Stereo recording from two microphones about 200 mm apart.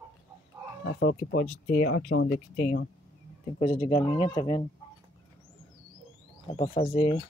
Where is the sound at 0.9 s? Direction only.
55° left (ahead or behind).